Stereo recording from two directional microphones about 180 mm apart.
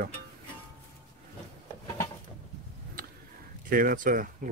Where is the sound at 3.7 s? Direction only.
50° right (ahead or behind).